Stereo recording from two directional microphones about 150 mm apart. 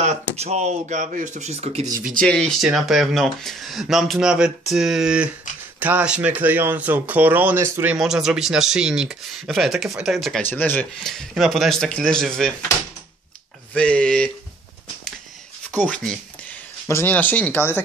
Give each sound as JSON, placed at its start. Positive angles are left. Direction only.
{"t": 0.0, "sound": "speech", "side_deg": -45}
{"t": 2.2, "sound": "speech", "side_deg": 5}
{"t": 7.9, "sound": "speech", "side_deg": -5}
{"t": 10.4, "sound": "speech", "side_deg": 10}
{"t": 13.7, "sound": "speech", "side_deg": 5}
{"t": 15.9, "sound": "speech", "side_deg": 5}